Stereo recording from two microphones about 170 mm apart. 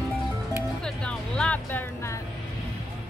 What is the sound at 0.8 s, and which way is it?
Music, 5° left (ahead or behind).